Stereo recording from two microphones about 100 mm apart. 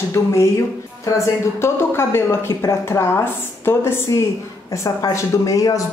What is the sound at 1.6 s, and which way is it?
A woman's voice, 25° left (ahead or behind).